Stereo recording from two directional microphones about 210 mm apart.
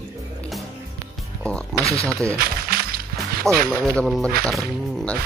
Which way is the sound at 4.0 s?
5° left (ahead or behind).